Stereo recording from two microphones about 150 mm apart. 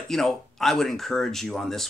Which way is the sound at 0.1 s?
Centre (ahead or behind).